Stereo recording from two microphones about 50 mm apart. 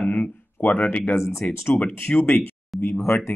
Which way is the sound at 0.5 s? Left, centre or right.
Left.